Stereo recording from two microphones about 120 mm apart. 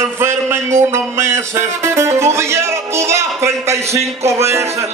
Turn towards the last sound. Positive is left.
turn(degrees=-25)  # may be behind; listen again after turning